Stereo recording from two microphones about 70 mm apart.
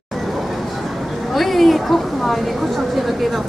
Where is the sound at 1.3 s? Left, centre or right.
Centre.